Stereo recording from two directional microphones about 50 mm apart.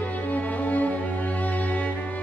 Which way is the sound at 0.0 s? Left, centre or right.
Left.